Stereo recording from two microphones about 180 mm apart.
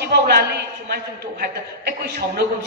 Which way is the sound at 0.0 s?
65° right (ahead or behind).